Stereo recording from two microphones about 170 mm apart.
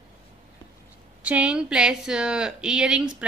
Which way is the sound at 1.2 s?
5° right (ahead or behind).